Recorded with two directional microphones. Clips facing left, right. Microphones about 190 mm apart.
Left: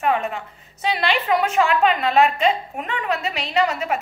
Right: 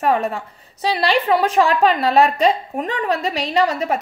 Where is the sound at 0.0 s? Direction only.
40° right (ahead or behind).